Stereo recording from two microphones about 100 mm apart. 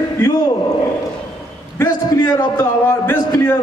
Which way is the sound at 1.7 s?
30° left (ahead or behind).